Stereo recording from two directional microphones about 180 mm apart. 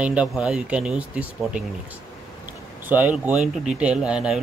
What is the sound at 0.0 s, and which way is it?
Speech, 5° right (ahead or behind).